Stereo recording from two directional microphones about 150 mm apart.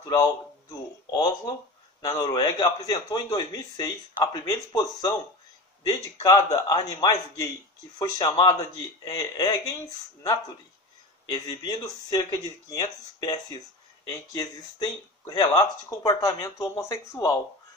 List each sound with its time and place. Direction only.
0.0 s speech: 20° left (ahead or behind)
6.2 s speech: 25° left (ahead or behind)
11.2 s speech: 25° left (ahead or behind)